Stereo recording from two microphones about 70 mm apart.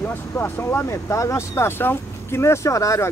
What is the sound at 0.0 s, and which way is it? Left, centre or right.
Speech, left.